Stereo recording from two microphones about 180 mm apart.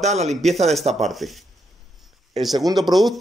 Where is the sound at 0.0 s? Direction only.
40° right (ahead or behind).